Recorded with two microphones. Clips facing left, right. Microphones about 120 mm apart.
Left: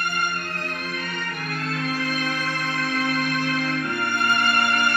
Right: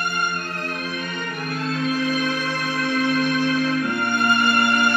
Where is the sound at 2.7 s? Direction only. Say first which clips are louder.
Right 5 dB; 15° right (ahead or behind).